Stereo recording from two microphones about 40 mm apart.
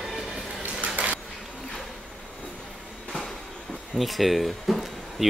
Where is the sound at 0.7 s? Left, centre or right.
Right.